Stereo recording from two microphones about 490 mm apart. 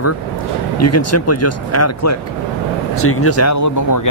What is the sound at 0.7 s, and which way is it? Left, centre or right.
Speech, left.